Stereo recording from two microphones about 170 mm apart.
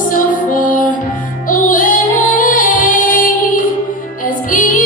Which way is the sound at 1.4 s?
50° left (ahead or behind).